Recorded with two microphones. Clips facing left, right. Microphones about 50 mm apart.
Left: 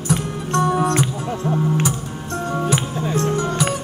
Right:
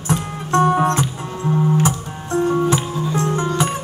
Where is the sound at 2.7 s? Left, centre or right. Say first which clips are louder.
Right 1 dB; left.